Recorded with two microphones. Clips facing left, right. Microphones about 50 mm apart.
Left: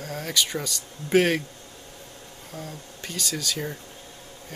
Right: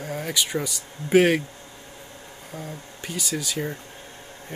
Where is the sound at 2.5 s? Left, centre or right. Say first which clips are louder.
Right 1 dB; centre.